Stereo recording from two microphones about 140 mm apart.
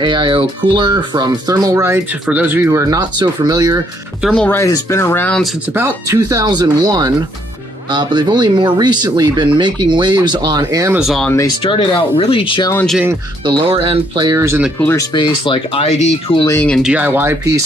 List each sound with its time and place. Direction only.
0.0 s speech: 35° right (ahead or behind)
4.3 s speech: 5° left (ahead or behind)
4.6 s speech: 20° left (ahead or behind)
5.7 s speech: 15° right (ahead or behind)
11.0 s speech: centre (ahead or behind)
11.6 s speech: 35° left (ahead or behind)
13.4 s speech: 35° right (ahead or behind)
14.3 s speech: 20° right (ahead or behind)
15.0 s speech: 35° left (ahead or behind)
16.5 s speech: 10° left (ahead or behind)
16.8 s speech: 10° right (ahead or behind)